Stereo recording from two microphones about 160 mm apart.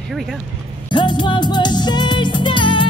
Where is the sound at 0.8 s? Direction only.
30° left (ahead or behind).